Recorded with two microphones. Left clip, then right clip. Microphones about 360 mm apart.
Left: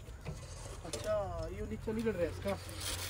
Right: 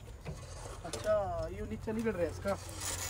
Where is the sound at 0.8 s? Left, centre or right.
Centre.